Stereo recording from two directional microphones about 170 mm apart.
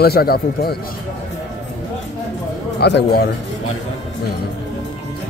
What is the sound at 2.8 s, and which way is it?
Speech, 80° left.